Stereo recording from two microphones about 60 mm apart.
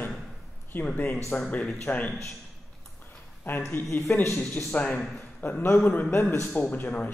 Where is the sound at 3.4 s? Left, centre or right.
Left.